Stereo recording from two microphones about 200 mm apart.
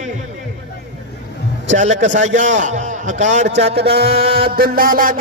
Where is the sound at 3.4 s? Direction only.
60° right (ahead or behind).